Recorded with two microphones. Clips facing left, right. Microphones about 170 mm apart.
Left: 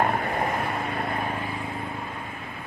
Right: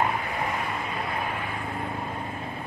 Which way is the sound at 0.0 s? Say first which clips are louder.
Left 3 dB; 50° left (ahead or behind).